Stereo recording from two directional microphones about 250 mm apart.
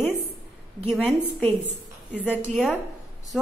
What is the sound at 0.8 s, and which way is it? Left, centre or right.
Speech, centre.